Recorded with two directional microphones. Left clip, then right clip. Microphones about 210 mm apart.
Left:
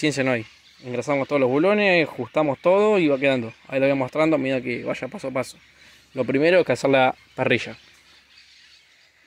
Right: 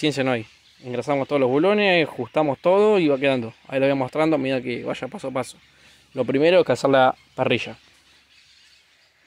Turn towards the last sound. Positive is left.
turn(degrees=0)  # may be behind; listen again after turning